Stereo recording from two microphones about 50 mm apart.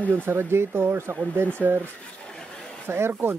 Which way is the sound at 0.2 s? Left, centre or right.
Right.